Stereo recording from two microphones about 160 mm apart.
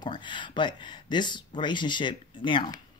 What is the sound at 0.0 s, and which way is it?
Speech, 30° left (ahead or behind).